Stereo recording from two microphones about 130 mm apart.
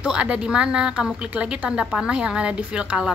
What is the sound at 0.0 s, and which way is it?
Speech, 10° right (ahead or behind).